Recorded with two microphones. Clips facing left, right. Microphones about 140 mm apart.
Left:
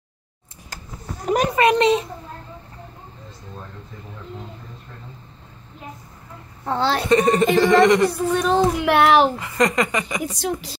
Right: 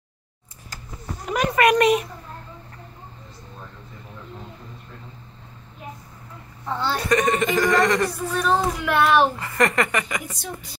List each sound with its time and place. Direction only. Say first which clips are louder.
1.2 s a sound: left 4 dB; 35° left (ahead or behind)
1.5 s a child's voice: right 1 dB; 25° left (ahead or behind)
7.0 s speech: left 3 dB; 30° left (ahead or behind)
8.7 s a child's voice: left 4 dB; 70° left (ahead or behind)
9.4 s speech: left 1 dB; 20° left (ahead or behind)
10.2 s a woman's voice: left 9 dB; 90° left